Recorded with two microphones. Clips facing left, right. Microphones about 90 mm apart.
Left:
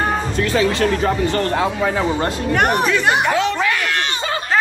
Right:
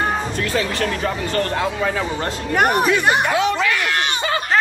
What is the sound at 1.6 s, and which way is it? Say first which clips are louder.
Speech: left 3 dB; 20° left (ahead or behind).